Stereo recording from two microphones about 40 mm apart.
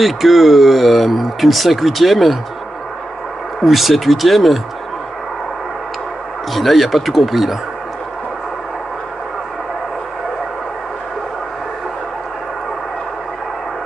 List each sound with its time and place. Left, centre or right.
0.0 s speech: centre
3.6 s speech: centre
6.5 s speech: centre